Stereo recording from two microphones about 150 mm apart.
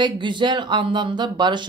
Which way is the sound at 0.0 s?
30° right (ahead or behind).